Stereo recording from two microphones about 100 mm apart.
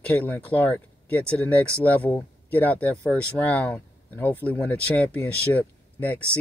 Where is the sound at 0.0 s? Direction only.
15° left (ahead or behind).